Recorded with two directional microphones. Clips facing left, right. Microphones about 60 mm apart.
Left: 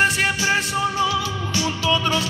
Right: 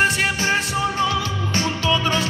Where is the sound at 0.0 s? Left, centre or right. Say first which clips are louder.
Even; centre.